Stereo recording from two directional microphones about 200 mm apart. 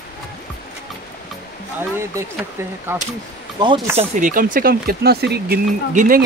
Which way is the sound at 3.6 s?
20° right (ahead or behind).